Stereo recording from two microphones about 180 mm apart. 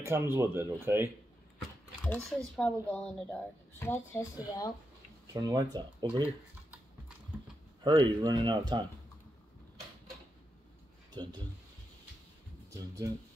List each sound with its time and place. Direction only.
0.0 s speech: 15° right (ahead or behind)
2.0 s speech: centre (ahead or behind)
5.3 s speech: 20° right (ahead or behind)
7.3 s mechanisms: 10° right (ahead or behind)
7.8 s speech: 25° right (ahead or behind)
11.2 s speech: 25° right (ahead or behind)